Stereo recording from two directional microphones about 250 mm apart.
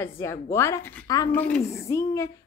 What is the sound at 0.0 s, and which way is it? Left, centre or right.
Speech, centre.